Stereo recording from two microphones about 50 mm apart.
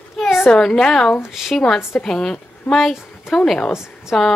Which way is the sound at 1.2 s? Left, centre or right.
Centre.